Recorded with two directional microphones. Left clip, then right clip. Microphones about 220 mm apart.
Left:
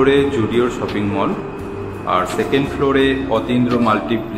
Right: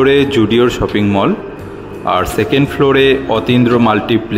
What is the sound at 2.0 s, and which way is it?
Speech, 45° right (ahead or behind).